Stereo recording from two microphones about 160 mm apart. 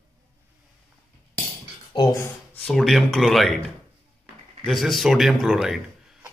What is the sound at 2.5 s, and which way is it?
A man's voice, 5° left (ahead or behind).